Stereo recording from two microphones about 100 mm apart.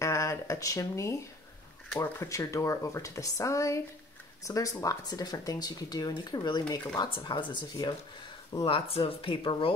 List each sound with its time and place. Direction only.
0.0 s a sound: 30° left (ahead or behind)
2.0 s speech: 35° left (ahead or behind)
7.0 s speech: 55° left (ahead or behind)
8.6 s speech: 65° left (ahead or behind)